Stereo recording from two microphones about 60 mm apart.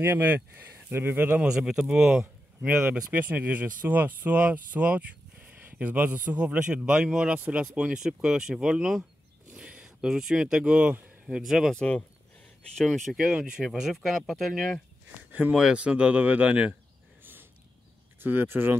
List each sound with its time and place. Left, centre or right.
0.0 s speech: right
1.4 s a man's voice: centre
2.7 s speech: right
11.3 s speech: centre
12.7 s speech: centre
13.2 s speech: centre
15.5 s speech: centre
17.2 s a sound: right
18.2 s speech: right